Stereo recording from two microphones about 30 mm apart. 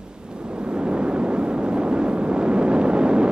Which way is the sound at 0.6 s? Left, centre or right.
Right.